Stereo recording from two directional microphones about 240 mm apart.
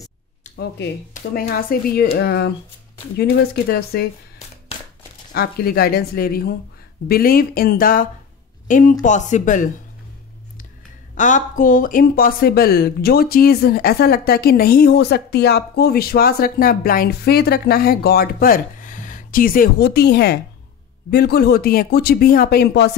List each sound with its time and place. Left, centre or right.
0.6 s speech: left
5.3 s speech: left
11.1 s speech: left